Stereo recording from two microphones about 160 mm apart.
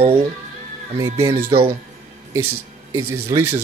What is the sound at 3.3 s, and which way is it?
Speech, 15° right (ahead or behind).